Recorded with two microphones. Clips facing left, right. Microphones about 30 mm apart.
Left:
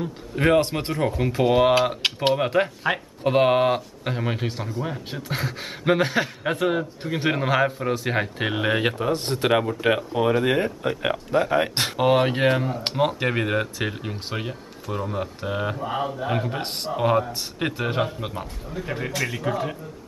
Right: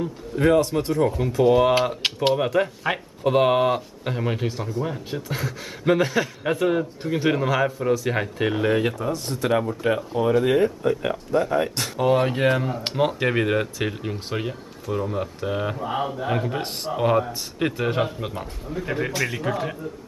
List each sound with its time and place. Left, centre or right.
0.4 s speech: left
0.9 s a sound: centre
2.1 s speech: centre
5.3 s a sound: left
6.5 s speech: centre
7.2 s a sound: left
9.0 s speech: left
9.9 s speech: left
12.9 s speech: centre